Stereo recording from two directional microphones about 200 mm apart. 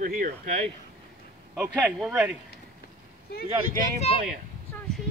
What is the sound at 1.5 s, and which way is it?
Speech, centre (ahead or behind).